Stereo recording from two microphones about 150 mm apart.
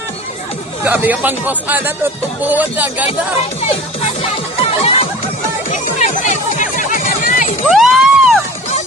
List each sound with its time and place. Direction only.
0.8 s a man's voice: 10° right (ahead or behind)
4.2 s music: 40° left (ahead or behind)
5.7 s music: 55° left (ahead or behind)
7.6 s a sound: centre (ahead or behind)